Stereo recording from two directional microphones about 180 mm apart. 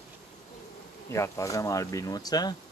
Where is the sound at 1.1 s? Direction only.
15° left (ahead or behind).